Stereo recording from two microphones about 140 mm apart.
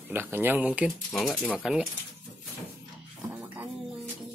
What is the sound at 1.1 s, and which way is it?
Speech, centre (ahead or behind).